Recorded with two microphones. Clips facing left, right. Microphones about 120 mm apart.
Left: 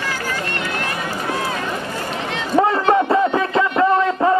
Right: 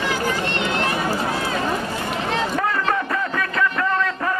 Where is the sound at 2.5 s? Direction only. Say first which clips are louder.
Left 7 dB; 30° left (ahead or behind).